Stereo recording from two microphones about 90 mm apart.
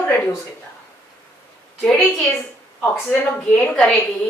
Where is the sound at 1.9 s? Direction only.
5° left (ahead or behind).